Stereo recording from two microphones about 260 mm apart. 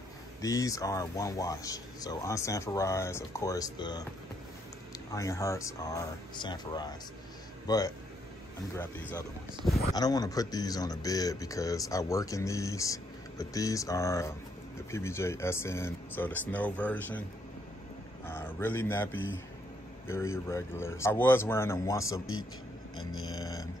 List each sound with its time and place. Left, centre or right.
0.4 s speech: centre
5.1 s speech: centre
18.2 s a man's voice: centre
20.4 s speech: centre
22.9 s speech: left
23.3 s a sound: centre